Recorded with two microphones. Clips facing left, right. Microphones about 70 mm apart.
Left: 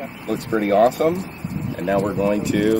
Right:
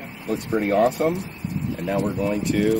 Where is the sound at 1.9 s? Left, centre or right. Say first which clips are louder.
Left 4 dB; left.